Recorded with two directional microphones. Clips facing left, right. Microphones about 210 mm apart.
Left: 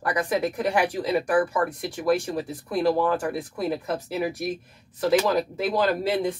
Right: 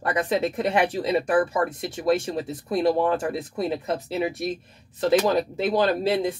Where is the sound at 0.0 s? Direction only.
25° right (ahead or behind).